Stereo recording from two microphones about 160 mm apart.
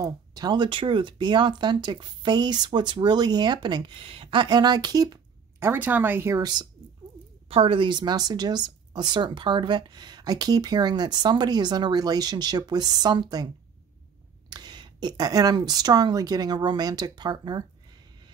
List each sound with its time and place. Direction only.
0.0 s speech: 25° right (ahead or behind)
7.4 s speech: 35° right (ahead or behind)
14.5 s speech: 25° right (ahead or behind)